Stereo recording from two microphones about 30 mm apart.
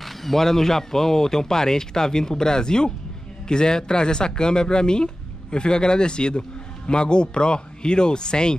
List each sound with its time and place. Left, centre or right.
0.0 s a man's voice: centre; by 8.5 s left